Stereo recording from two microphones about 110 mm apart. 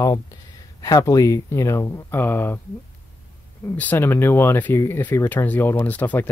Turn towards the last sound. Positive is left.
turn(degrees=15)  # may be behind; listen again after turning